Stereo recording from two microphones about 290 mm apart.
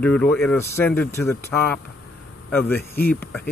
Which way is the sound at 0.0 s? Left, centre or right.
Centre.